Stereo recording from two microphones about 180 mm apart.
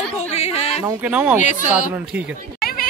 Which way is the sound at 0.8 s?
10° right (ahead or behind).